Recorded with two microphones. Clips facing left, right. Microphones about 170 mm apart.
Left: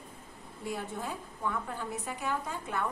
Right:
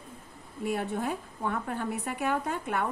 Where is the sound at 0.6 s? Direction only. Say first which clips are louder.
Right 6 dB; 65° right (ahead or behind).